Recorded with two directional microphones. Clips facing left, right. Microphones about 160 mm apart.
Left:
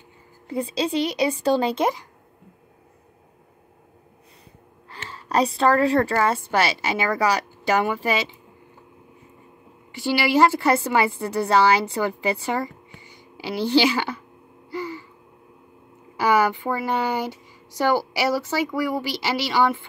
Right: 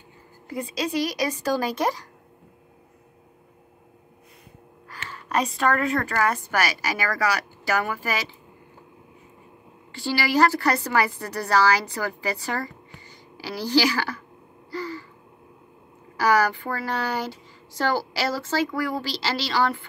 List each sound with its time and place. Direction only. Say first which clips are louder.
0.5 s a woman's voice: left 4 dB; 30° left (ahead or behind)
4.8 s a woman's voice: left 1 dB; 30° left (ahead or behind)
9.9 s a woman's voice: left 3 dB; 20° left (ahead or behind)
14.7 s gasp: left 1 dB; 20° left (ahead or behind)
16.2 s speech: left 1 dB; 20° left (ahead or behind)